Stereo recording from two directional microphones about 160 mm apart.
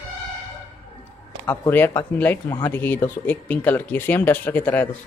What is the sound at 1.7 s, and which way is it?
Speech, 15° left (ahead or behind).